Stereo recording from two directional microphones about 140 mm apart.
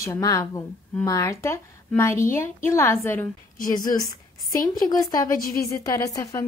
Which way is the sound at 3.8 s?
25° left (ahead or behind).